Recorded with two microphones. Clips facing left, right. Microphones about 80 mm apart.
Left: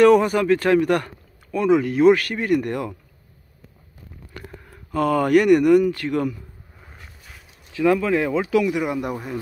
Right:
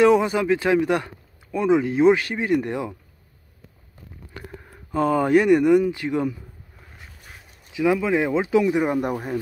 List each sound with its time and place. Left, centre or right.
0.0 s speech: centre
4.9 s speech: right
7.7 s speech: centre; by 9.4 s right